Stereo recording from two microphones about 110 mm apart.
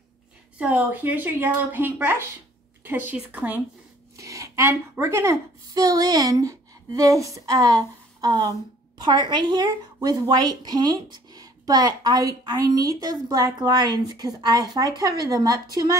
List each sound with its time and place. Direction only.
0.6 s speech: 15° right (ahead or behind)
4.2 s speech: 30° right (ahead or behind)